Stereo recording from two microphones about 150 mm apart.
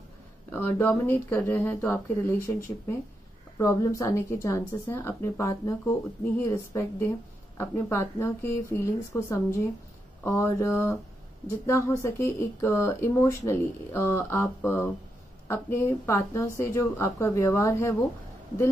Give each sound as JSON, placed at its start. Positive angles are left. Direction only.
{"t": 0.5, "sound": "speech", "side_deg": 15}
{"t": 3.5, "sound": "a woman's voice", "side_deg": 20}